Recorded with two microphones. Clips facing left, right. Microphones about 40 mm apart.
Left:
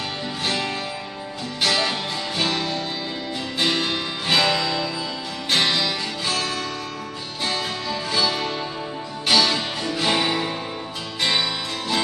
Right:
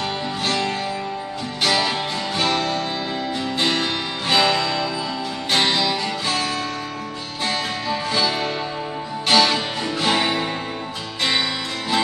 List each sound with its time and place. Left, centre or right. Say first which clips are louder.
1.6 s music: right 2 dB; centre
7.9 s music: right 2 dB; centre